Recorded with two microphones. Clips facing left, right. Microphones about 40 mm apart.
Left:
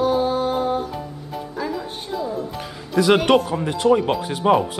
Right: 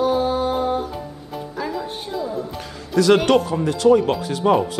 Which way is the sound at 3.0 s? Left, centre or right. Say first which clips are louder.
Right 1 dB; left.